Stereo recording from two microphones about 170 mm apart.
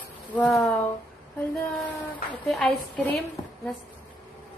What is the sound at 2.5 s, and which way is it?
Speech, 5° left (ahead or behind).